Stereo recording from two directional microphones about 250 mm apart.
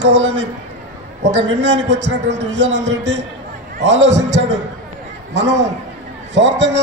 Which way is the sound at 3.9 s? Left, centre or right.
Right.